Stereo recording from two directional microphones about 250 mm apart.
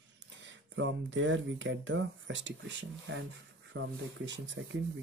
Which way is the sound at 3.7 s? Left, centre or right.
Right.